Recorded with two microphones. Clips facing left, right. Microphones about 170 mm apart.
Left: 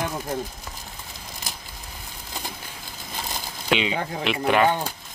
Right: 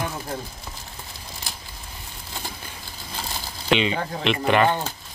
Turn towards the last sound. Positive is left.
turn(degrees=10)  # may be behind; listen again after turning